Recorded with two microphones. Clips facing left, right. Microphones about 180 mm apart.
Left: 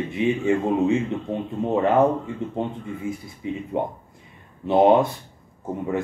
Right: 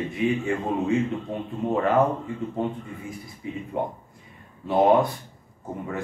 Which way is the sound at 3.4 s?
20° left (ahead or behind).